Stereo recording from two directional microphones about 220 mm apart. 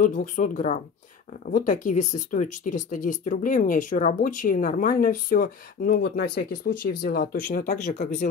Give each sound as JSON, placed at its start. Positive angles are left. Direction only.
{"t": 0.0, "sound": "speech", "side_deg": 35}